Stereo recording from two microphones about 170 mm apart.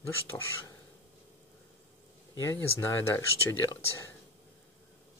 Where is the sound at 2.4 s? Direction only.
15° left (ahead or behind).